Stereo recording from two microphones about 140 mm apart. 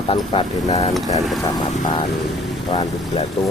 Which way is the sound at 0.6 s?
55° left (ahead or behind).